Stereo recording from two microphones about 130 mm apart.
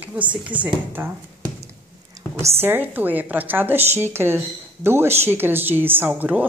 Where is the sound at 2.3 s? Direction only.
20° right (ahead or behind).